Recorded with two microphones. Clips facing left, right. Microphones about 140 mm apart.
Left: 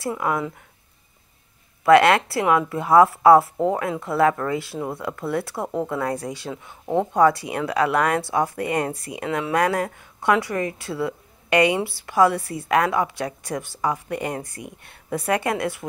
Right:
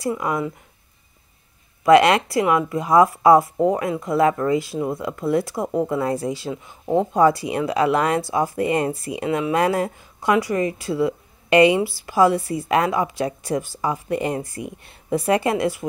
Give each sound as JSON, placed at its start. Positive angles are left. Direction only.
{"t": 0.2, "sound": "speech", "side_deg": -15}
{"t": 1.9, "sound": "a woman's voice", "side_deg": -20}